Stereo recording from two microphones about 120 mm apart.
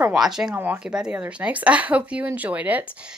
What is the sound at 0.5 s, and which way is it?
A woman's voice, 15° right (ahead or behind).